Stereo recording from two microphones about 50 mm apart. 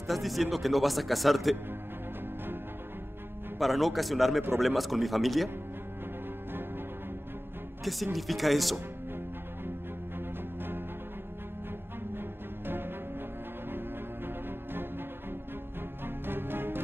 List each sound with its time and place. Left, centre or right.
0.1 s speech: centre
3.5 s speech: centre
7.8 s speech: centre
12.2 s music: right
16.3 s music: right